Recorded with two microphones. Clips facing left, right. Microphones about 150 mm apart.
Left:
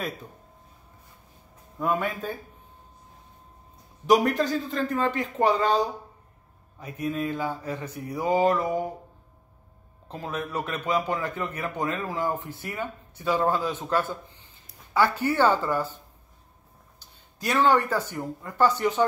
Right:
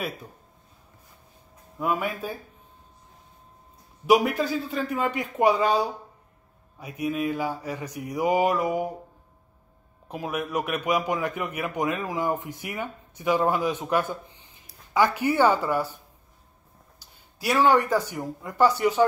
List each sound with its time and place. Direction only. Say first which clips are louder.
1.8 s a man's voice: even; 10° right (ahead or behind)
4.0 s a man's voice: even; 10° right (ahead or behind)
10.0 s a man's voice: right 2 dB; 15° right (ahead or behind)
17.0 s speech: right 2 dB; 10° right (ahead or behind)